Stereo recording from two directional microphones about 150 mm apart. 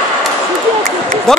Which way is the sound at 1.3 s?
5° left (ahead or behind).